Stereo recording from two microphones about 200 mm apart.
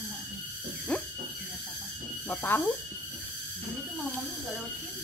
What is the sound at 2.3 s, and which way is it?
Speech, 10° left (ahead or behind).